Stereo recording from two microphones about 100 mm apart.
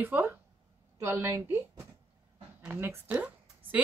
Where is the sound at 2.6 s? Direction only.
20° right (ahead or behind).